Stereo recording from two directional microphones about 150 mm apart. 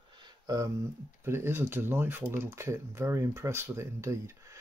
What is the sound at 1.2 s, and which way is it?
Speech, 15° right (ahead or behind).